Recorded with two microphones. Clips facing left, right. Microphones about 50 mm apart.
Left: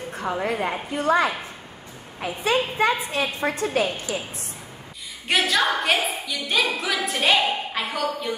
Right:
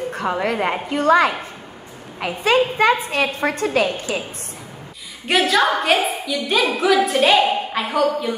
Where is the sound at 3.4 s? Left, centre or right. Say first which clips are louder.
Right 2 dB; right.